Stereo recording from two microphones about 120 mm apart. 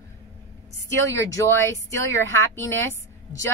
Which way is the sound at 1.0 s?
25° left (ahead or behind).